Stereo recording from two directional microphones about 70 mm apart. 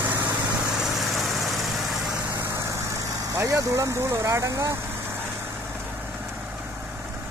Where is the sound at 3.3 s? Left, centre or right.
Right.